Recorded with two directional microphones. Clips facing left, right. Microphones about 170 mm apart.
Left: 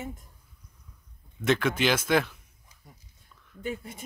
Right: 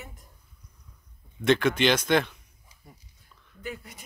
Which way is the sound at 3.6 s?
25° left (ahead or behind).